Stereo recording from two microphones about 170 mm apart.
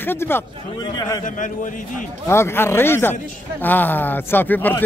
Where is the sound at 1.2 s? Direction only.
50° left (ahead or behind).